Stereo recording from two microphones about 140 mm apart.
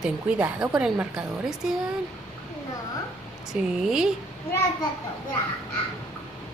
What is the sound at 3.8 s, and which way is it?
Speech, 5° right (ahead or behind).